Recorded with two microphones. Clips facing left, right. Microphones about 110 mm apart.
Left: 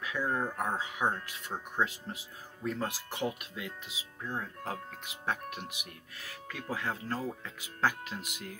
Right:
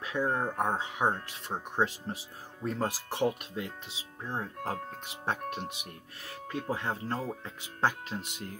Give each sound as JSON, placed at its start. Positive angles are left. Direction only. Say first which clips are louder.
{"t": 0.0, "sound": "speech", "louder": "right 2 dB", "side_deg": -30}